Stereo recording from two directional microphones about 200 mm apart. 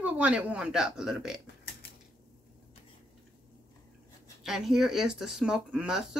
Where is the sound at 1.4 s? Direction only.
55° left (ahead or behind).